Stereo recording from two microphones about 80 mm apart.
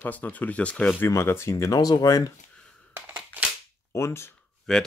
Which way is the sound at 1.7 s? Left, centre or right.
Left.